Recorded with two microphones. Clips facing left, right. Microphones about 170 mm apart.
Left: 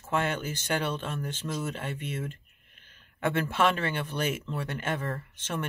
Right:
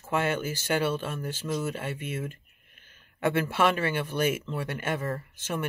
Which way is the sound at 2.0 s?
50° right (ahead or behind).